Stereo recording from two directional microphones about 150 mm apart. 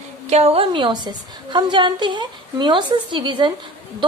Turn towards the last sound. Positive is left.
turn(degrees=-30)  # may be behind; listen again after turning